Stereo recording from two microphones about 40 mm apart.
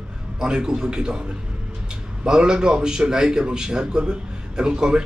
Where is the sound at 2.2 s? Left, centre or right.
Right.